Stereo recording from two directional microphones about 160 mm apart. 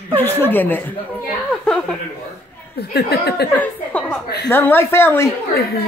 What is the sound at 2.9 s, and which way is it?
Speech, 85° left.